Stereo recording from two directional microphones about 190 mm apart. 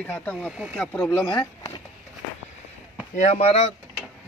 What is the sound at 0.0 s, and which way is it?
Speech, 10° left (ahead or behind).